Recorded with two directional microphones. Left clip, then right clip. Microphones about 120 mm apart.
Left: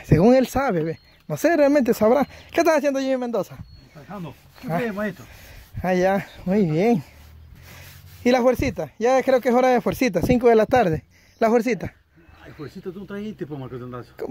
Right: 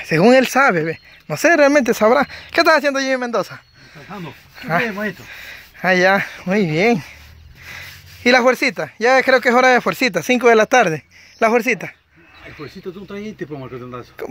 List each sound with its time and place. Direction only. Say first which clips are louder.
0.0 s speech: right 5 dB; 25° left (ahead or behind)
4.1 s speech: right 4 dB; 15° left (ahead or behind); by 11.9 s 50° left (ahead or behind)
12.4 s speech: right 4 dB; 25° left (ahead or behind)